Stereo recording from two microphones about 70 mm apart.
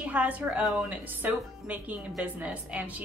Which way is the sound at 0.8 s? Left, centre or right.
Right.